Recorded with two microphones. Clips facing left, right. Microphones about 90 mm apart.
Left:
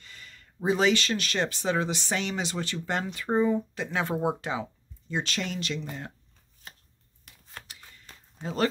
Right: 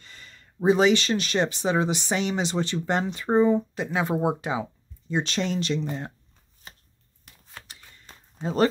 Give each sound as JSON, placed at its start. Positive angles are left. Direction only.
{"t": 0.0, "sound": "speech", "side_deg": -30}
{"t": 3.8, "sound": "speech", "side_deg": -15}
{"t": 7.6, "sound": "typing", "side_deg": -25}